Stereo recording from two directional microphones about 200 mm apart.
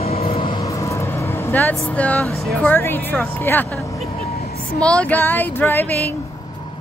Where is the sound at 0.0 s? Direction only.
30° left (ahead or behind); by 2.5 s 5° left (ahead or behind).